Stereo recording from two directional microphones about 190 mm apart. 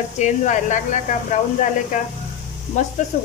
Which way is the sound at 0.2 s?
40° left (ahead or behind).